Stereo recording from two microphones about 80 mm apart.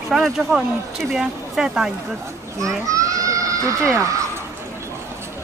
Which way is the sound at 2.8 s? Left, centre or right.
Right.